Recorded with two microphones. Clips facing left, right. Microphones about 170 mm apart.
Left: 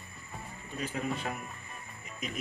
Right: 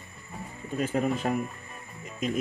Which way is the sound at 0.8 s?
45° right (ahead or behind).